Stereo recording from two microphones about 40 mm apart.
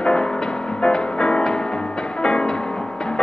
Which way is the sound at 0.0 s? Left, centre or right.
Centre.